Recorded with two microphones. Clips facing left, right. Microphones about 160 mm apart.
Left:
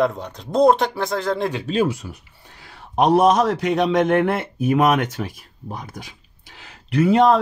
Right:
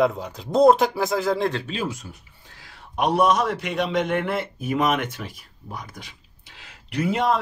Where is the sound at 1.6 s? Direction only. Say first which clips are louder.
Left 8 dB; 55° left (ahead or behind).